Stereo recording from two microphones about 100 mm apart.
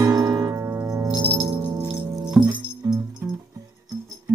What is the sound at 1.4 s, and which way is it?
Music, 35° right (ahead or behind).